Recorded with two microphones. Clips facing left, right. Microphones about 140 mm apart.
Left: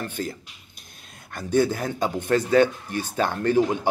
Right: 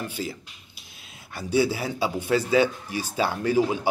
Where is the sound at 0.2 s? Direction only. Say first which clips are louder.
Left 2 dB; 55° left (ahead or behind).